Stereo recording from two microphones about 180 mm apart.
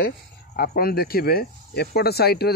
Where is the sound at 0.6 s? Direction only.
55° left (ahead or behind).